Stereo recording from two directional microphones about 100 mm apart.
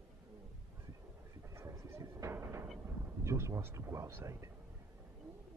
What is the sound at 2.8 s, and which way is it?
Vehicle, 30° right (ahead or behind).